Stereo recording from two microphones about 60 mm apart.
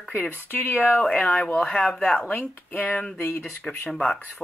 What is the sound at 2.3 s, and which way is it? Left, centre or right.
Speech, left.